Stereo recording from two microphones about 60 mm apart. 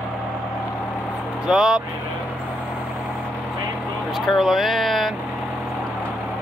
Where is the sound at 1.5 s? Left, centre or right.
Centre.